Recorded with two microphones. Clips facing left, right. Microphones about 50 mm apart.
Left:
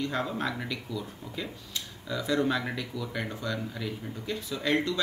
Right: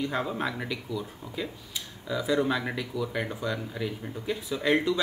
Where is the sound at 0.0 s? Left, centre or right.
Centre.